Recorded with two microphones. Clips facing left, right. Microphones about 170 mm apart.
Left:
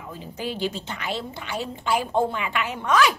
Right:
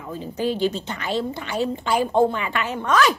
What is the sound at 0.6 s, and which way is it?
A woman's voice, 5° left (ahead or behind).